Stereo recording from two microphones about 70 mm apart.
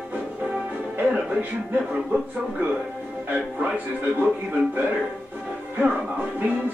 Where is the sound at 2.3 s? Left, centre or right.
Centre.